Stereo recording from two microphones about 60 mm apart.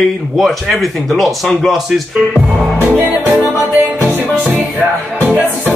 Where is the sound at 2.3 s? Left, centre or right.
Centre.